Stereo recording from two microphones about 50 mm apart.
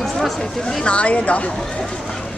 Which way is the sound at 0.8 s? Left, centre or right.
Left.